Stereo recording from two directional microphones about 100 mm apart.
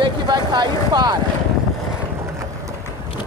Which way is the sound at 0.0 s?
45° right (ahead or behind).